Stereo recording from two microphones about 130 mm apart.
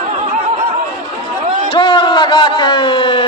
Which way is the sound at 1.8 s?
40° left (ahead or behind).